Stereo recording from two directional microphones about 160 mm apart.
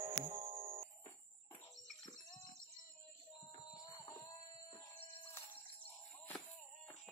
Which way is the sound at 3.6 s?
25° left (ahead or behind).